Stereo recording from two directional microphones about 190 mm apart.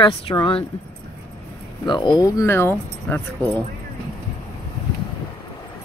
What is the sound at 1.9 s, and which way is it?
Speech, 25° left (ahead or behind).